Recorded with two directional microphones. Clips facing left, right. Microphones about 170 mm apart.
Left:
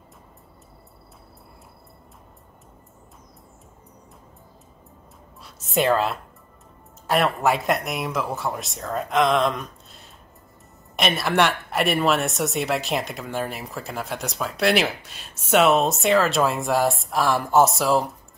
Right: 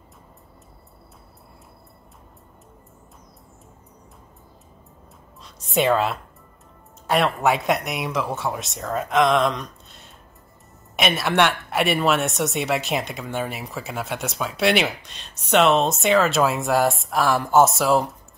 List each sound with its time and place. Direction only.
5.4 s a woman's voice: centre (ahead or behind)